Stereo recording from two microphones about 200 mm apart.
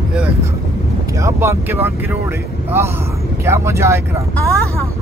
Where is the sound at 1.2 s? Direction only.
15° right (ahead or behind).